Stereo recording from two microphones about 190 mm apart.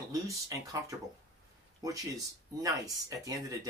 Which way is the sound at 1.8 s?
20° right (ahead or behind).